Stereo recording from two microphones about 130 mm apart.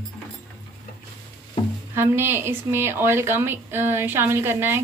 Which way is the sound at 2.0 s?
20° right (ahead or behind).